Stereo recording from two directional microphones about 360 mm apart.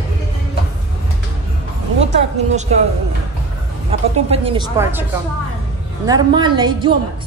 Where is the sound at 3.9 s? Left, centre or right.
Centre.